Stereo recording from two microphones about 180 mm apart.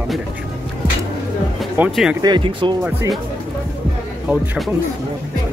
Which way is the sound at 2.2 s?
25° right (ahead or behind).